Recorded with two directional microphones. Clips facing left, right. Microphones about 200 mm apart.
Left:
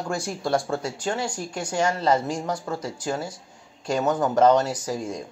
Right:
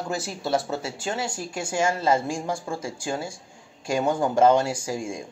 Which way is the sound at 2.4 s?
25° right (ahead or behind).